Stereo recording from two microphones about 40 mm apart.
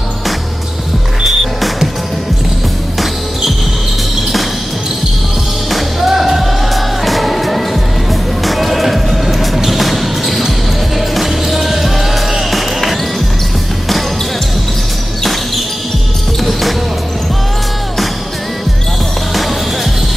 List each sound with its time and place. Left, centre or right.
1.2 s music: centre
5.7 s music: centre
12.4 s basketball bounce: centre
16.3 s basketball bounce: centre
19.3 s music: centre